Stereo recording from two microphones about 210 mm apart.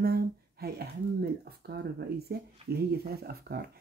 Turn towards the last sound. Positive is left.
turn(degrees=-45)  # may be behind; listen again after turning